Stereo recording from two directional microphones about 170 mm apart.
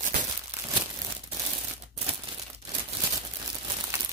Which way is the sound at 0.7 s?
30° right (ahead or behind).